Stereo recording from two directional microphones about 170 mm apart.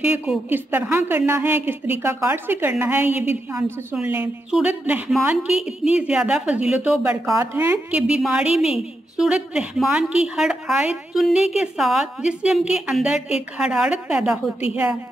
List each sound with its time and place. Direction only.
0.0 s a woman's voice: 5° right (ahead or behind)